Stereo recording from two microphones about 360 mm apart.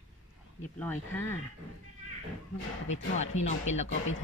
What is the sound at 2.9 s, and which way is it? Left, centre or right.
Speech, centre.